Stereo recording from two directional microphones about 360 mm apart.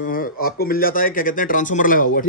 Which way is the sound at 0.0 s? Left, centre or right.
Left.